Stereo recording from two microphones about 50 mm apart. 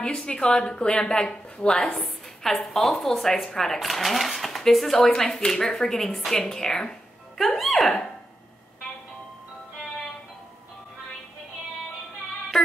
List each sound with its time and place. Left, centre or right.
0.0 s a woman's voice: centre
1.8 s a woman's voice: centre